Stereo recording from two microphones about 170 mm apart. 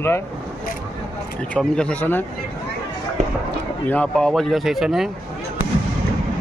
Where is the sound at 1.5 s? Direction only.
5° left (ahead or behind).